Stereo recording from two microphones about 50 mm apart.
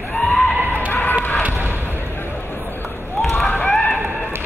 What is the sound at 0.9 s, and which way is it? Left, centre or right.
Chicken, left.